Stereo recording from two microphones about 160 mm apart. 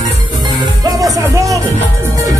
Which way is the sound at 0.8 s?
20° right (ahead or behind).